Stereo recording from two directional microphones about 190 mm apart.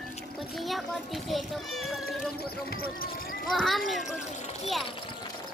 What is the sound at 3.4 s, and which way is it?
Speech, centre (ahead or behind).